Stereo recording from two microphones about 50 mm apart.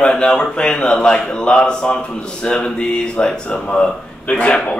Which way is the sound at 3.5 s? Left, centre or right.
Left.